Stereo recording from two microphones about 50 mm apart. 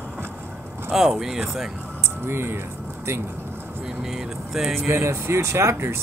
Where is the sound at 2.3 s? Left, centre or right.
Right.